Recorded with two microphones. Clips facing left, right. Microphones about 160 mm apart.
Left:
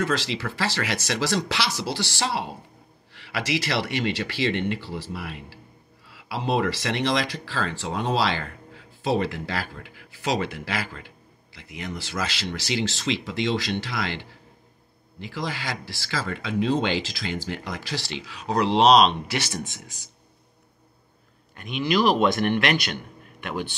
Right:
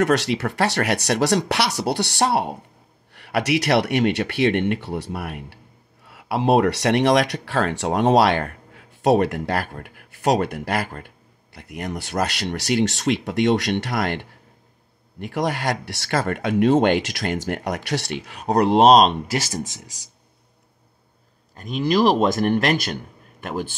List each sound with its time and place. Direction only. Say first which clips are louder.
0.0 s speech: right 7 dB; 65° right (ahead or behind); by 20.1 s 40° right (ahead or behind)
21.5 s speech: right 4 dB; 40° right (ahead or behind)